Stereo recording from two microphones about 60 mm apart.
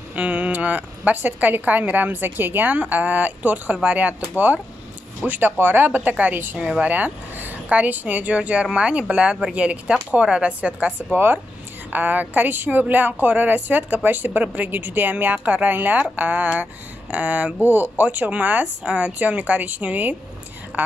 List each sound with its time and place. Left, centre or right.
0.1 s a woman's voice: right
5.2 s a woman's voice: right
20.7 s a sound: right